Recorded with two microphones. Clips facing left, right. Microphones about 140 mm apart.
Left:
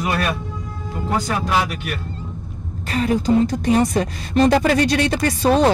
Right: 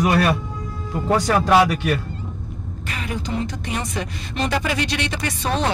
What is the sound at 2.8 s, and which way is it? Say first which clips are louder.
A woman's voice: left 10 dB; 35° left (ahead or behind).